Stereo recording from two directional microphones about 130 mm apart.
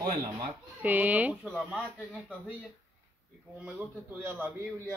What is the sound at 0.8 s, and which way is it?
Speech, 10° right (ahead or behind).